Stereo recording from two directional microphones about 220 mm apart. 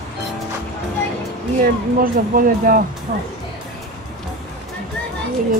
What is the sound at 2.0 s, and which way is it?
Speech, 40° right (ahead or behind).